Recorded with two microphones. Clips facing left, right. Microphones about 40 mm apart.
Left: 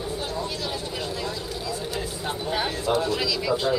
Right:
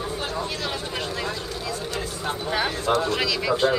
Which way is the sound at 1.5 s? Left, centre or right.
Right.